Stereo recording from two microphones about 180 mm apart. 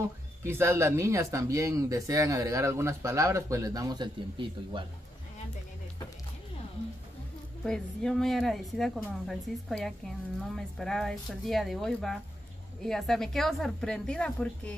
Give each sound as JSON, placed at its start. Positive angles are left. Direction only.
{"t": 0.0, "sound": "speech", "side_deg": -15}
{"t": 7.6, "sound": "speech", "side_deg": 5}